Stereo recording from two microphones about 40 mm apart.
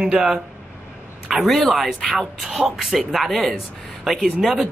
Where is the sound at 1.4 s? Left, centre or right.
Centre.